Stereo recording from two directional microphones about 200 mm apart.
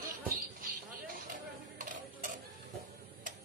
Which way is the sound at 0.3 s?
45° right (ahead or behind).